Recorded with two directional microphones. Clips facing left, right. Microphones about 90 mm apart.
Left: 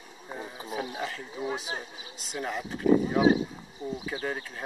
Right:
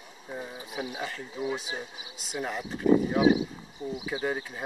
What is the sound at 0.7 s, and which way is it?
Speech, 15° right (ahead or behind).